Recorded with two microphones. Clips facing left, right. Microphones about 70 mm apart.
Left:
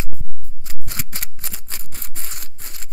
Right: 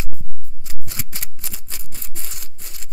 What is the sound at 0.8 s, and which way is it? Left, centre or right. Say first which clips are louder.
Scissors: left 2 dB; left.